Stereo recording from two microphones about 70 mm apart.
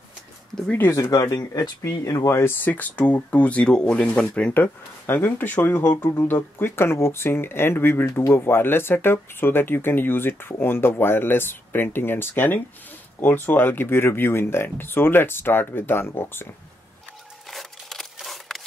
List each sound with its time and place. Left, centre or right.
0.7 s speech: left
0.9 s speech: left
2.6 s speech: left
4.6 s speech: left
17.5 s a sound: centre